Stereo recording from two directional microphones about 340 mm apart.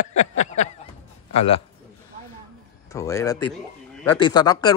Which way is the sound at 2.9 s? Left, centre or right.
Centre.